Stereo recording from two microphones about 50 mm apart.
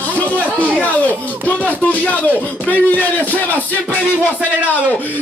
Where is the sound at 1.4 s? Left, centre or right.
Left.